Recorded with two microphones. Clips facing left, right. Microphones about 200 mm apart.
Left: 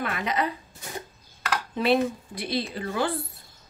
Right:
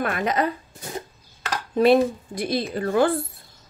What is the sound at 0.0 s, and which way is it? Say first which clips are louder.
Speech: right 4 dB; 50° right (ahead or behind).